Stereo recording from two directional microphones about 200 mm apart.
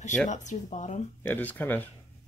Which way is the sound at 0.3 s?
35° left (ahead or behind).